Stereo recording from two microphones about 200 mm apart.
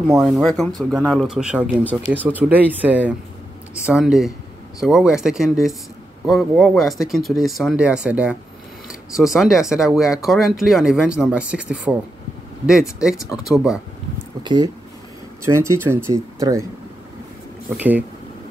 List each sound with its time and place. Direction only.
0.1 s speech: centre (ahead or behind)
14.4 s speech: 20° right (ahead or behind)
17.7 s speech: 10° right (ahead or behind)